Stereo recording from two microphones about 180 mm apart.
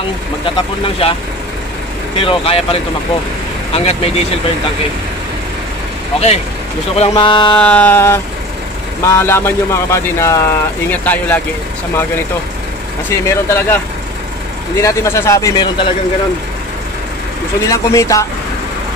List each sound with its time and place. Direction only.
0.8 s speech: 30° left (ahead or behind)
2.1 s speech: 30° left (ahead or behind)
6.1 s speech: 35° left (ahead or behind)
7.5 s speech: 10° left (ahead or behind)
13.3 s speech: 15° left (ahead or behind)
14.8 s speech: 15° left (ahead or behind)
17.6 s speech: 15° left (ahead or behind)